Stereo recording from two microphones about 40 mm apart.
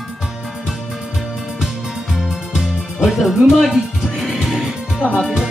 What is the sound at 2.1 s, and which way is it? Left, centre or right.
Music, centre.